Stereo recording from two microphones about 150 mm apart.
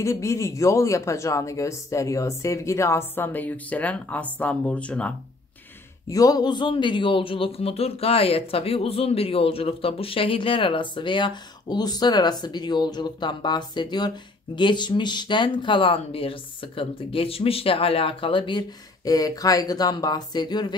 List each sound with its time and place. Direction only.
0.0 s speech: 20° left (ahead or behind)
6.0 s speech: 25° left (ahead or behind)